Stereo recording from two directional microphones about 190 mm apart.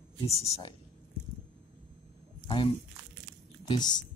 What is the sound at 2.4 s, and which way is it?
Speech, 25° left (ahead or behind).